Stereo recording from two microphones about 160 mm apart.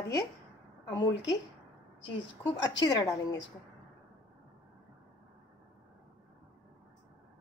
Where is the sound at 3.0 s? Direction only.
20° left (ahead or behind).